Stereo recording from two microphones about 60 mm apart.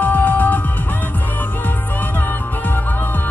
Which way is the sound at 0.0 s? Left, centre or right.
Left.